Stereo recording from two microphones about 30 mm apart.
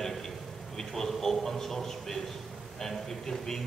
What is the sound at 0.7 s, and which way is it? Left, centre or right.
A man's voice, centre.